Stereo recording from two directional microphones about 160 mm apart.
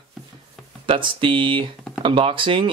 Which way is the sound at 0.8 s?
30° right (ahead or behind).